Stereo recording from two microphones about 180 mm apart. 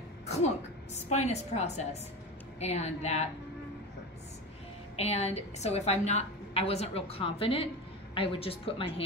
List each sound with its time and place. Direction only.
0.9 s a woman's voice: 40° left (ahead or behind)
4.9 s a woman's voice: 35° left (ahead or behind)